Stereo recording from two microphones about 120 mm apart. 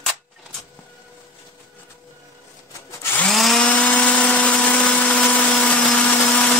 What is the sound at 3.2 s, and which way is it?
Tools, 5° left (ahead or behind).